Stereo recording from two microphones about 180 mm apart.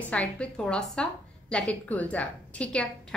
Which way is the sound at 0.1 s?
5° left (ahead or behind).